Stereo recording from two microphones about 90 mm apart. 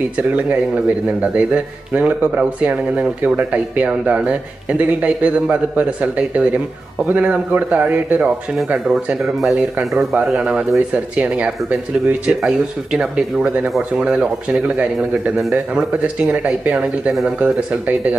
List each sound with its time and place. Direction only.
0.4 s a man's voice: 20° right (ahead or behind)
8.6 s speech: 5° right (ahead or behind)
9.8 s a man's voice: 15° right (ahead or behind)